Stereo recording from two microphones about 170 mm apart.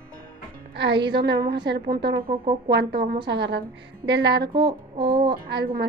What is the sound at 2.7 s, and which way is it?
Speech, 80° right.